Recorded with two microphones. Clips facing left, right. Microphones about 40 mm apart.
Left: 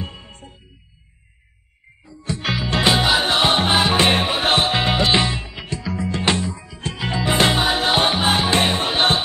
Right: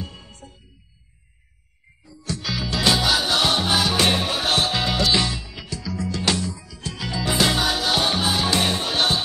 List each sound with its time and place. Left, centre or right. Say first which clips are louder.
0.0 s music: left 3 dB; left
2.0 s music: left 4 dB; left